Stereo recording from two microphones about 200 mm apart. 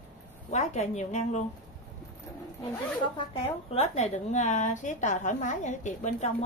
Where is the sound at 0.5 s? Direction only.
35° left (ahead or behind).